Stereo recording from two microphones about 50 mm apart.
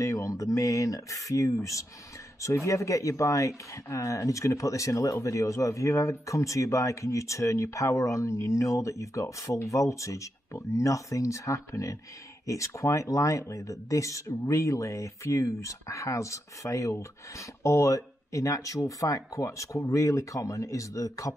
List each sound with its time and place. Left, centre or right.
0.1 s speech: left